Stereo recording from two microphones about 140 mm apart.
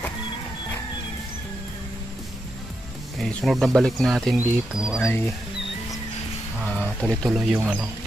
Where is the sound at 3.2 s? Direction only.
5° left (ahead or behind).